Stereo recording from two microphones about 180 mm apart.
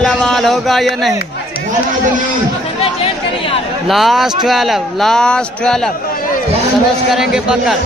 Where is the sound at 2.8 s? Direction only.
30° left (ahead or behind).